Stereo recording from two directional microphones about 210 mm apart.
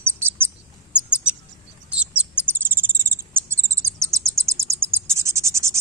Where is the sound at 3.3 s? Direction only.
15° right (ahead or behind).